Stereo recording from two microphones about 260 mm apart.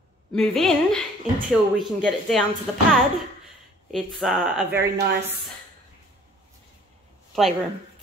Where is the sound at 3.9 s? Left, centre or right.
Centre.